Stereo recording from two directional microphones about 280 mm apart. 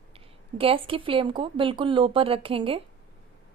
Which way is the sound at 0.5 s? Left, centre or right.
Centre.